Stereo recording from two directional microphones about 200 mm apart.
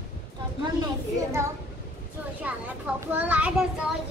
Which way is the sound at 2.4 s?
10° right (ahead or behind).